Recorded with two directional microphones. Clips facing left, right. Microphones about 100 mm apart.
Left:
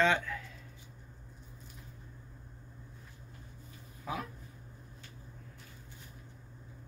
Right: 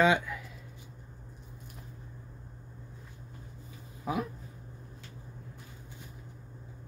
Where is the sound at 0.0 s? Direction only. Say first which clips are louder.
Right 4 dB; 10° right (ahead or behind).